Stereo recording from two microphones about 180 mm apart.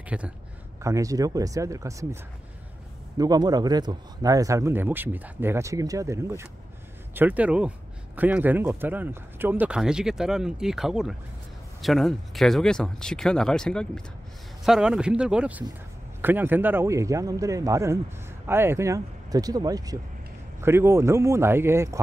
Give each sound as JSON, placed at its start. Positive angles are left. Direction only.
{"t": 0.1, "sound": "speech", "side_deg": -5}
{"t": 0.8, "sound": "speech", "side_deg": -20}
{"t": 3.2, "sound": "speech", "side_deg": -20}